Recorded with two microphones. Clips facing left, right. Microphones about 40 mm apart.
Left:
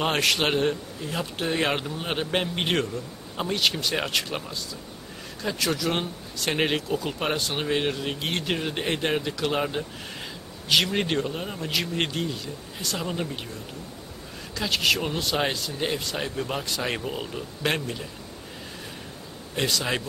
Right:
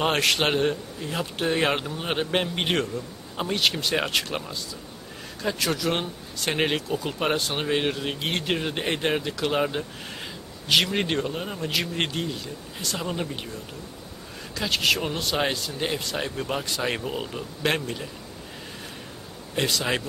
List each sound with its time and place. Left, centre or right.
0.0 s speech: centre
14.5 s speech: centre
19.5 s speech: centre